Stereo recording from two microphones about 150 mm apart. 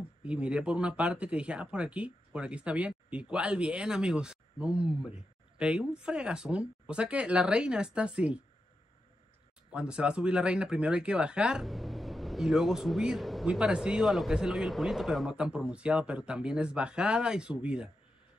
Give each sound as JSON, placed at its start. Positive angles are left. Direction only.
{"t": 0.2, "sound": "speech", "side_deg": -5}
{"t": 9.7, "sound": "speech", "side_deg": -5}